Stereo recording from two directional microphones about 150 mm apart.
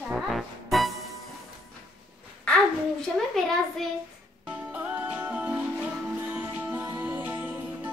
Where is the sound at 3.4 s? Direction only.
Centre (ahead or behind).